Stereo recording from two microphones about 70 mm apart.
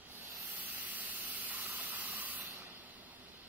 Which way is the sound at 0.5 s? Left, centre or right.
Right.